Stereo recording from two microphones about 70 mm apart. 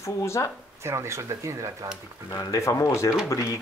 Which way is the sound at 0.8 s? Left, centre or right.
Right.